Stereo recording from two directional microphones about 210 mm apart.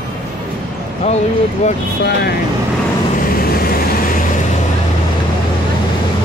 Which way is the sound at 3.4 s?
45° left (ahead or behind).